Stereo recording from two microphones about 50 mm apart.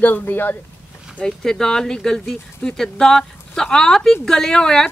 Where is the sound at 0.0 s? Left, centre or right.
Left.